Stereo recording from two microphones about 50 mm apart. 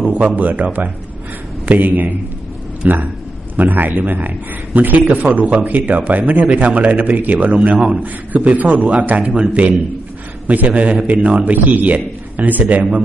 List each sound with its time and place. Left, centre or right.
0.0 s a sound: right
0.4 s a man's voice: right
1.7 s a man's voice: right
7.7 s a man's voice: centre
8.0 s a man's voice: right